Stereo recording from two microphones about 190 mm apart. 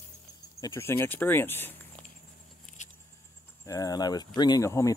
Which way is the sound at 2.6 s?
40° left (ahead or behind).